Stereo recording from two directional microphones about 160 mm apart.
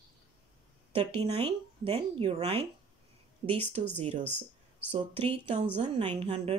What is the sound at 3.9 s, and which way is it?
Speech, 45° right (ahead or behind).